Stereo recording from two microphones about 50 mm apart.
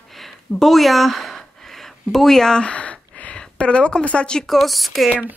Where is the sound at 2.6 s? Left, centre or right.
Left.